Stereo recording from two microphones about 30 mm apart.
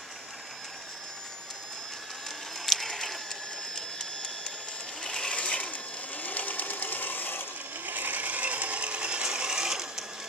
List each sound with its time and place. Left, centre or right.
2.6 s a sound: centre
5.0 s sewing machine: left
5.4 s sewing machine: left
5.7 s sewing machine: left
7.8 s ratchet: right; by 10.0 s centre